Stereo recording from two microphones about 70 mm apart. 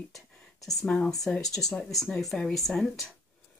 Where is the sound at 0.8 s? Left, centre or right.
Centre.